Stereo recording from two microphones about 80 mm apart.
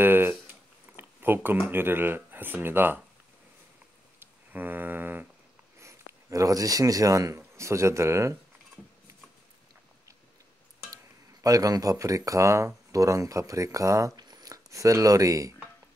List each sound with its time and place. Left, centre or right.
0.0 s a sound: right
0.9 s speech: right
4.2 s a sound: right
5.8 s speech: right
11.4 s speech: right
14.1 s speech: right